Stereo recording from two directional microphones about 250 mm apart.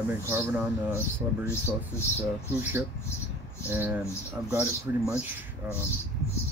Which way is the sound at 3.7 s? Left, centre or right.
Centre.